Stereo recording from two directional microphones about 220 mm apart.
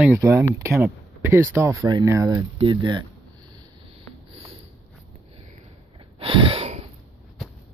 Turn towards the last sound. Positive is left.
turn(degrees=-30)  # may be behind; listen again after turning